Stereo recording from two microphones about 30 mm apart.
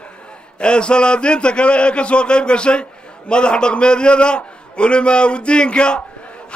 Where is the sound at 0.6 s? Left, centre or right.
Left.